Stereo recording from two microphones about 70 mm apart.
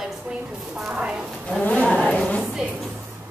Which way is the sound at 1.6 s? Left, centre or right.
Left.